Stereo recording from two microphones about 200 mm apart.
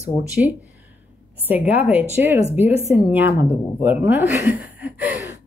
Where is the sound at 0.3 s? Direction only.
5° right (ahead or behind).